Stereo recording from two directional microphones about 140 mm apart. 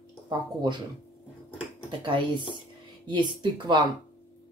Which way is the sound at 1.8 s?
35° right (ahead or behind).